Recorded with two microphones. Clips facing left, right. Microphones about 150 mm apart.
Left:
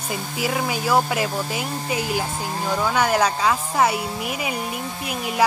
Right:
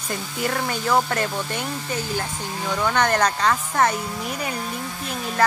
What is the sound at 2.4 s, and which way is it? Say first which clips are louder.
Speech: left 3 dB; 40° left (ahead or behind).